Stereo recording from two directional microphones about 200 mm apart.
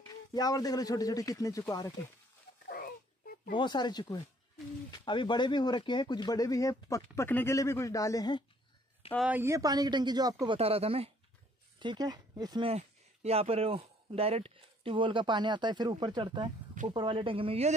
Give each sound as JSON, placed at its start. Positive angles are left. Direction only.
{"t": 0.0, "sound": "a man's voice", "side_deg": 20}
{"t": 3.5, "sound": "speech", "side_deg": 20}
{"t": 9.3, "sound": "speech", "side_deg": -15}